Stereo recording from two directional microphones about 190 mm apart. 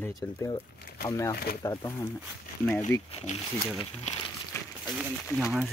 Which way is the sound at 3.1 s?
30° left (ahead or behind).